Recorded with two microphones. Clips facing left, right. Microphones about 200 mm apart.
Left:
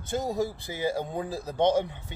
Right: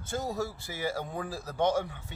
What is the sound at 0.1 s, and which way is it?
Speech, 15° left (ahead or behind).